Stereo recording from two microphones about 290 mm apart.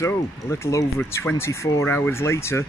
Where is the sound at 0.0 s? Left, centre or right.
Centre.